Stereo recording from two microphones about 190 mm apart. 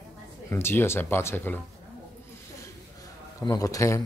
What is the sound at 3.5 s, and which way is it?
Speech, 15° left (ahead or behind).